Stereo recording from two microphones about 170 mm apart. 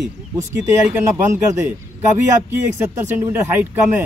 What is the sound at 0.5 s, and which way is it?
Speech, 10° right (ahead or behind).